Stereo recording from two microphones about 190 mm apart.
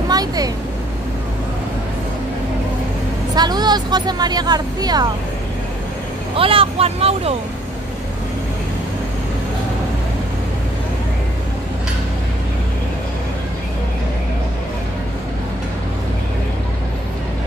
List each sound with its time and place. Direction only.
0.1 s a sound: 20° right (ahead or behind)
3.3 s speech: 20° right (ahead or behind)
6.3 s speech: 30° right (ahead or behind)